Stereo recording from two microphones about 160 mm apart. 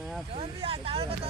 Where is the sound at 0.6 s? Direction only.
35° right (ahead or behind).